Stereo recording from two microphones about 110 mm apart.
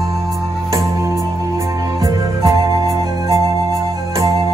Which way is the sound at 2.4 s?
35° right (ahead or behind).